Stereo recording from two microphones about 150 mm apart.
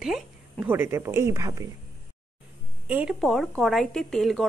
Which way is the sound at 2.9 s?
10° right (ahead or behind).